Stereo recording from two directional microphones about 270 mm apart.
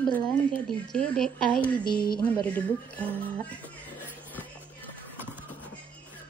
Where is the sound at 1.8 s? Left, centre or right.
Centre.